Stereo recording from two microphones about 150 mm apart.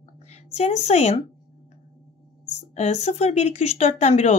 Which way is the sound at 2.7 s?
50° left (ahead or behind).